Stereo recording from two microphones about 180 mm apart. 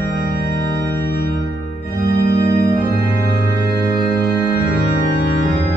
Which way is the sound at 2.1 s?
60° left (ahead or behind).